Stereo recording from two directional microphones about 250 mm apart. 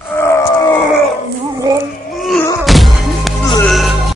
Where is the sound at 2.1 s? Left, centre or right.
Centre.